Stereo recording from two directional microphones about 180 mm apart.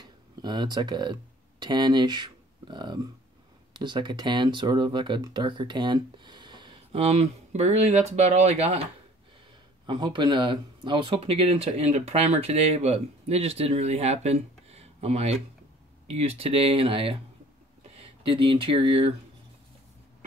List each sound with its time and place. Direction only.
0.0 s speech: 25° right (ahead or behind)
9.8 s speech: 25° right (ahead or behind)